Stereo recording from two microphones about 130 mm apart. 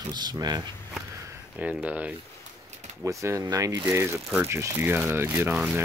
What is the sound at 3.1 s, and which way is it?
Speech, 25° right (ahead or behind).